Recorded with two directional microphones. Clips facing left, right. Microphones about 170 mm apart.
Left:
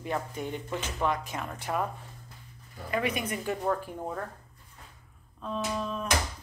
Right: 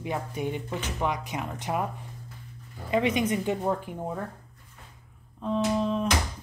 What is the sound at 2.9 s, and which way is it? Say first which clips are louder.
Speech: right 6 dB; 20° right (ahead or behind).